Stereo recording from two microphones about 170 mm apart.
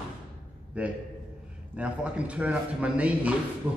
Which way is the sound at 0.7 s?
10° right (ahead or behind).